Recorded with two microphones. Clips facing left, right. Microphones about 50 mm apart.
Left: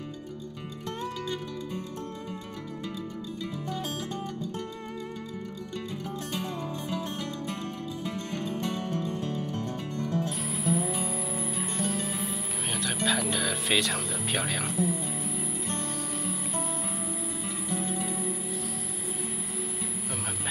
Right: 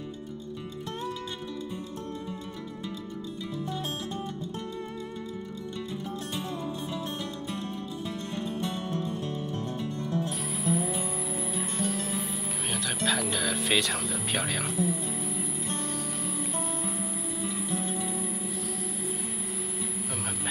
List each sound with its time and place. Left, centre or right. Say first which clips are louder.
7.4 s music: even; left
10.5 s music: even; centre
16.8 s music: right 1 dB; centre